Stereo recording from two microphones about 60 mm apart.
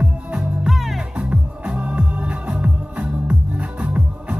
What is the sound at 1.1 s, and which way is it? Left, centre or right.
Music, centre.